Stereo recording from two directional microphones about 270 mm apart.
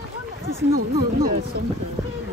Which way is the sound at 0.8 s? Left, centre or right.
Right.